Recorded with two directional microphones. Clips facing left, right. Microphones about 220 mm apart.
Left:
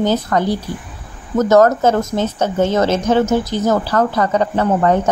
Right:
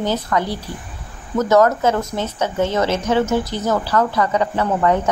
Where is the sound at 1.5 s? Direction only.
45° left (ahead or behind).